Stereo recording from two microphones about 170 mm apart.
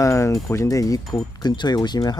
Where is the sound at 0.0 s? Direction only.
15° left (ahead or behind).